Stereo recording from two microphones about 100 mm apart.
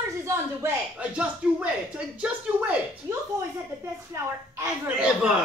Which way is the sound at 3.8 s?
30° right (ahead or behind).